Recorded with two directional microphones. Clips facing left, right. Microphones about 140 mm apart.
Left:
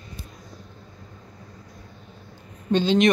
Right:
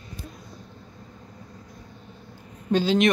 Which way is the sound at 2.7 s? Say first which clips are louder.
Left 2 dB; 5° right (ahead or behind).